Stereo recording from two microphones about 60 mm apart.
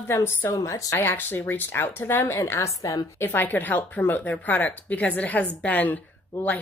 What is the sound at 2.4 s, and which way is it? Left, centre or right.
Speech, left.